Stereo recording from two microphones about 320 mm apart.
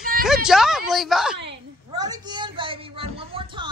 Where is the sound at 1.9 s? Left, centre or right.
Centre.